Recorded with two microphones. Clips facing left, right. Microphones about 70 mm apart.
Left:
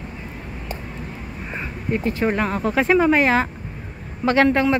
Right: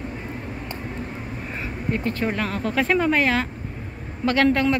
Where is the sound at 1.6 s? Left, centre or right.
Centre.